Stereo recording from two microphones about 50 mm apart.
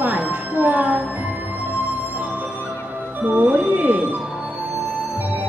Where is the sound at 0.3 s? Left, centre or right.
Right.